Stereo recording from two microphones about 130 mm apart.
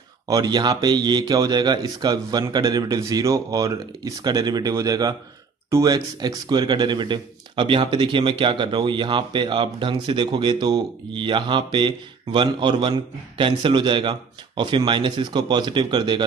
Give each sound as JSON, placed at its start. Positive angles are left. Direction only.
{"t": 0.3, "sound": "speech", "side_deg": -30}